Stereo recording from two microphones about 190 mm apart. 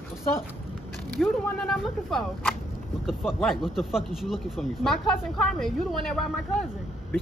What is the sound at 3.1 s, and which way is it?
Speech, centre (ahead or behind).